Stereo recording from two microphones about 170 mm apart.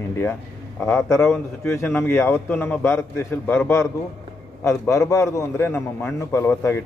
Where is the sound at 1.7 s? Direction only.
15° left (ahead or behind).